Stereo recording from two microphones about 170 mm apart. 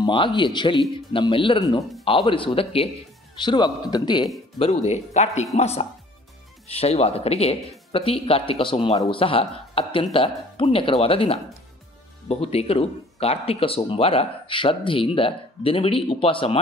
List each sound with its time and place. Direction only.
0.0 s a man's voice: 25° left (ahead or behind)
4.6 s speech: 40° left (ahead or behind)